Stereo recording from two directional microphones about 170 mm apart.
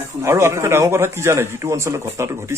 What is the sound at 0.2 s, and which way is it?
A man's voice, 15° right (ahead or behind).